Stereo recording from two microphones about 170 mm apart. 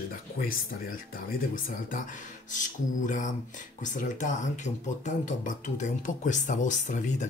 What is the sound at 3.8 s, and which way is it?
Speech, 45° left (ahead or behind).